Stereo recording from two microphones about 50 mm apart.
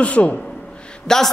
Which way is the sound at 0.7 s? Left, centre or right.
Centre.